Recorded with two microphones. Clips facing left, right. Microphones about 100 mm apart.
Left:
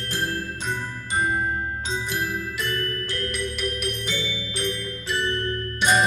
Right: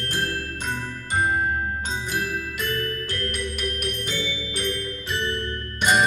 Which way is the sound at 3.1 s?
50° right (ahead or behind).